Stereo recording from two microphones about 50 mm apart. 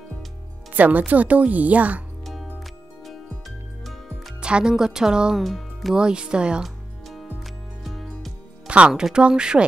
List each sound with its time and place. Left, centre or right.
0.7 s speech: right
3.0 s music: centre
4.4 s speech: centre
5.4 s speech: centre
5.9 s speech: centre
6.6 s music: centre
8.6 s speech: right